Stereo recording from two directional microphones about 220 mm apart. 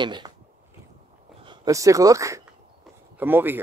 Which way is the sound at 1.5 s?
15° right (ahead or behind).